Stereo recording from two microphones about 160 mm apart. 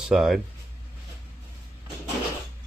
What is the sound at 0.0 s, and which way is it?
Speech, centre (ahead or behind).